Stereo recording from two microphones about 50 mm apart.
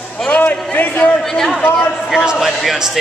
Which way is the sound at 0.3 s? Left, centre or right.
Left.